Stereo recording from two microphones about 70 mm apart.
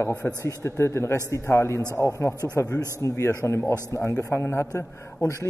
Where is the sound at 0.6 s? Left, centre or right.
Left.